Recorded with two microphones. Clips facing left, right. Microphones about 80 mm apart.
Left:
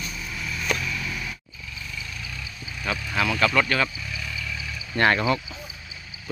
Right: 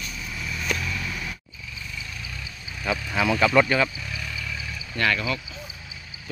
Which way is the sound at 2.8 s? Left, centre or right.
Centre.